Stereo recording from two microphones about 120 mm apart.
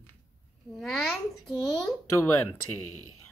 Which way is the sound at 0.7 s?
Centre (ahead or behind).